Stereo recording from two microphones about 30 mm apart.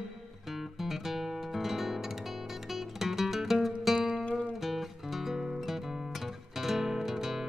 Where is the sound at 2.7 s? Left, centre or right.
Centre.